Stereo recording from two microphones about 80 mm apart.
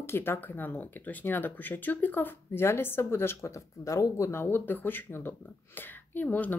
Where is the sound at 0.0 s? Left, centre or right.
Left.